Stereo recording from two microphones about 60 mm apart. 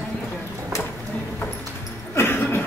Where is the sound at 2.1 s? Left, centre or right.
Left.